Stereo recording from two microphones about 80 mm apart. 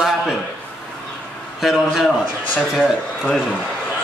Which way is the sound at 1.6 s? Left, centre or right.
Centre.